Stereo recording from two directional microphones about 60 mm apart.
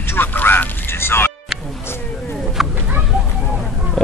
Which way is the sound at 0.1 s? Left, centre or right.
Left.